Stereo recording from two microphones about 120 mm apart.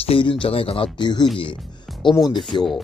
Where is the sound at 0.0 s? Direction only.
50° left (ahead or behind).